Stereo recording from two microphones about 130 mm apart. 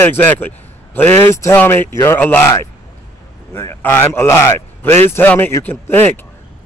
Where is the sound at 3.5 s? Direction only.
20° left (ahead or behind).